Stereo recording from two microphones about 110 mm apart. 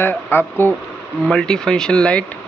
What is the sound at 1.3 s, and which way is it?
Speech, 5° left (ahead or behind).